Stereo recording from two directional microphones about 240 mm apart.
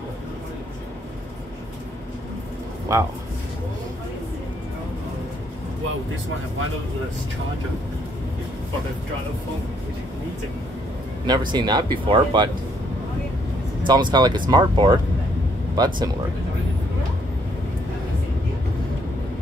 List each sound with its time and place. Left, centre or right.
2.9 s speech: centre
11.2 s speech: centre
13.8 s speech: centre